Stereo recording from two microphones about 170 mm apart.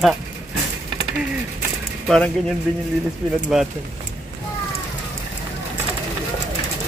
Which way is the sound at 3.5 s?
5° right (ahead or behind).